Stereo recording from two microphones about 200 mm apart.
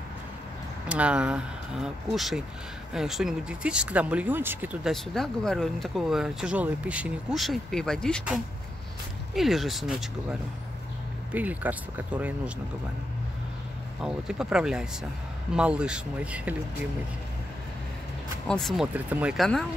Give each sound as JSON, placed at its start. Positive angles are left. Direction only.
{"t": 0.8, "sound": "speech", "side_deg": -5}
{"t": 4.9, "sound": "speech", "side_deg": 0}
{"t": 11.3, "sound": "speech", "side_deg": -10}
{"t": 14.0, "sound": "speech", "side_deg": -5}
{"t": 18.5, "sound": "speech", "side_deg": 0}